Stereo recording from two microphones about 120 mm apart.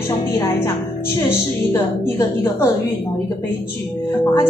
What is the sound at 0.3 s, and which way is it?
A woman's voice, 25° left (ahead or behind).